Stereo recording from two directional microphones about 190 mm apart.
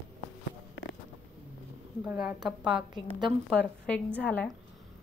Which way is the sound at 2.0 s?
5° right (ahead or behind).